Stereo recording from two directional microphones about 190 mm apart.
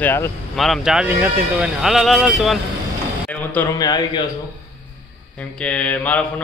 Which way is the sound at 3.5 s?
15° left (ahead or behind).